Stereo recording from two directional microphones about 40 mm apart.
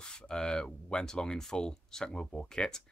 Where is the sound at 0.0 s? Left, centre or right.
Left.